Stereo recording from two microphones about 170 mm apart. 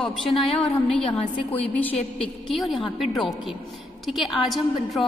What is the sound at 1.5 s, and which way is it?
A woman's voice, 10° left (ahead or behind).